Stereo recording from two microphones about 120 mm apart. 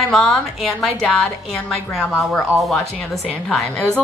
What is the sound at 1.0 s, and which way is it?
Speech, 15° left (ahead or behind).